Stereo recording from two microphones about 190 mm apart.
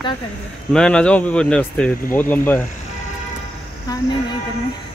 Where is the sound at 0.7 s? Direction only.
5° left (ahead or behind).